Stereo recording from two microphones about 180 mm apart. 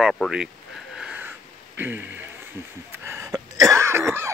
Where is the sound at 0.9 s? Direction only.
5° right (ahead or behind).